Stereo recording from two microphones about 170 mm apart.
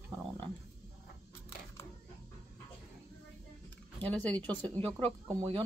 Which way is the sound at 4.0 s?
10° left (ahead or behind).